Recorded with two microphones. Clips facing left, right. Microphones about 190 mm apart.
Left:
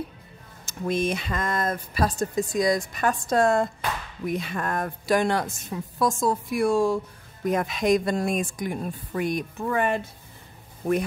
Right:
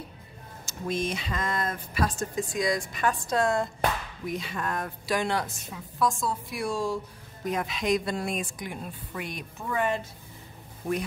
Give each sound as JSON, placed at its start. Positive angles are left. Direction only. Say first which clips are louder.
{"t": 0.7, "sound": "speech", "louder": "left 5 dB", "side_deg": 55}